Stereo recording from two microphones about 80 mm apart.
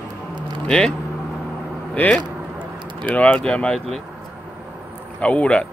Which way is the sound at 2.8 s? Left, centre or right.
Right.